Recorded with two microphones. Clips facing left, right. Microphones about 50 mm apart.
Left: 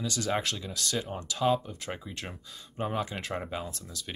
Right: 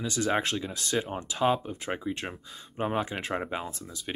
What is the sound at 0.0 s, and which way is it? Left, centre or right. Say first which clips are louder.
Speech: right 3 dB; right.